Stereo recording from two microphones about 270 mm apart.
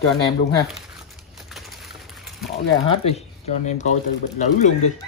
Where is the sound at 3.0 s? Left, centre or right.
Left.